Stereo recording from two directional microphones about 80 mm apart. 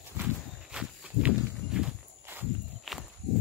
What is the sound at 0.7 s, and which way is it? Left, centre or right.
Walk, centre.